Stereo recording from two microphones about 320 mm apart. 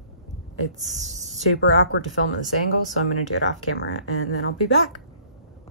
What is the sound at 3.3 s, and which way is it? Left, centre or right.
Speech, left.